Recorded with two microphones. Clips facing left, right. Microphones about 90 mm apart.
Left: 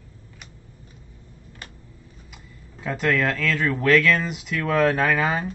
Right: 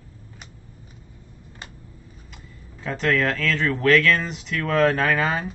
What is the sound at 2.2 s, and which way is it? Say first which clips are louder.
Speech: right 1 dB; 5° left (ahead or behind).